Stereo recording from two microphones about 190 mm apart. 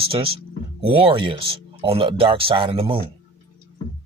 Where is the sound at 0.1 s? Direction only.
30° right (ahead or behind).